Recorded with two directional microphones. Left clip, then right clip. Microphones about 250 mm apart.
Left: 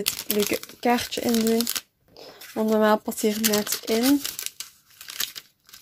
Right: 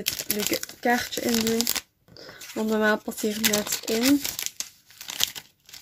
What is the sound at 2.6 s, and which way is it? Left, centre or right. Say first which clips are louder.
Speech: left 3 dB; centre.